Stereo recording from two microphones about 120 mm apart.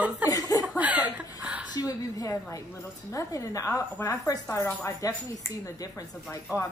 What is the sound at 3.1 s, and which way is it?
A woman's voice, 25° left (ahead or behind).